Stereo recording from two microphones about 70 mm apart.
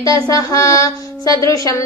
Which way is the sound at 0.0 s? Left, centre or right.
Left.